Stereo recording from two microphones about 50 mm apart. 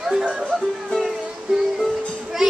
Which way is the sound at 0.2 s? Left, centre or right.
Right.